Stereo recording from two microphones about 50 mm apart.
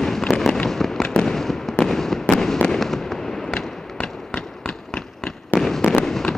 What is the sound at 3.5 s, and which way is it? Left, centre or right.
Fireworks, left.